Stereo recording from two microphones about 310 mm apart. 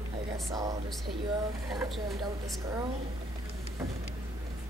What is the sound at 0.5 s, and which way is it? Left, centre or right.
Speech, centre.